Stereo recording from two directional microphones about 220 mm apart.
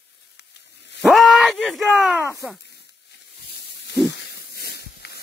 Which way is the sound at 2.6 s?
50° left (ahead or behind).